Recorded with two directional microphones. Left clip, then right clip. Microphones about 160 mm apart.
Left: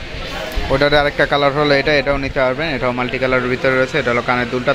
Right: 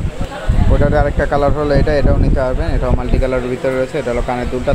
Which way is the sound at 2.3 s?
Centre (ahead or behind).